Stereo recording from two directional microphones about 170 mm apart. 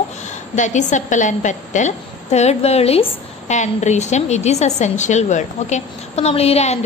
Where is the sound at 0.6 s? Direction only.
45° left (ahead or behind).